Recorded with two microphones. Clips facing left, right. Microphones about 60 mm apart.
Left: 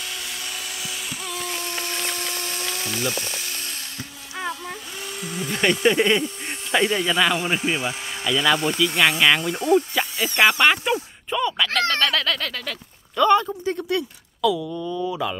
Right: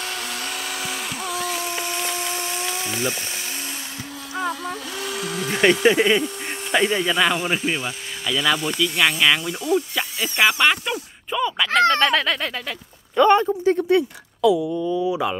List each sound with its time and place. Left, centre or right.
0.0 s a sound: right
2.9 s speech: right
5.0 s a sound: right
5.5 s speech: centre
10.0 s a sound: centre
10.6 s speech: centre
11.2 s speech: centre
11.9 s speech: right
14.8 s speech: centre